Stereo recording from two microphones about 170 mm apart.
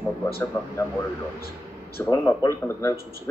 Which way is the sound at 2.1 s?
20° left (ahead or behind).